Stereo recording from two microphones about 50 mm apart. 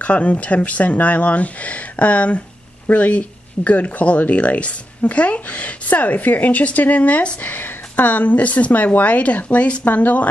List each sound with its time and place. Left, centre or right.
0.0 s speech: left